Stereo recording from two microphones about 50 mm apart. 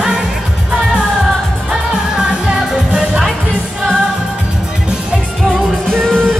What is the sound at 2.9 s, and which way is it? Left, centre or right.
Music, centre.